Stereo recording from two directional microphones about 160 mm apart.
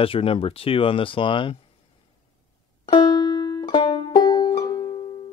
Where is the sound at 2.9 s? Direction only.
25° left (ahead or behind).